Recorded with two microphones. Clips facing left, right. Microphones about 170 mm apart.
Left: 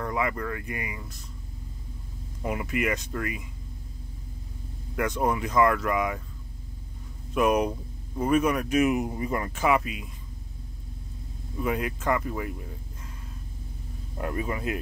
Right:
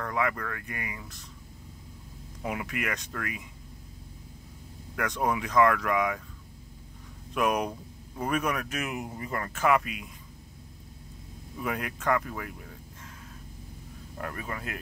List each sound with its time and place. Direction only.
0.0 s speech: 5° left (ahead or behind)
2.4 s speech: centre (ahead or behind)
4.9 s speech: 5° left (ahead or behind)
7.3 s speech: 5° left (ahead or behind)
8.7 s speech: 20° left (ahead or behind)
9.6 s speech: 5° left (ahead or behind)
11.5 s speech: centre (ahead or behind)
14.1 s speech: 15° left (ahead or behind)